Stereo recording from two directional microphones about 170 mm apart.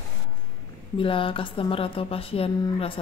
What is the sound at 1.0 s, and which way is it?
Speech, 30° left (ahead or behind).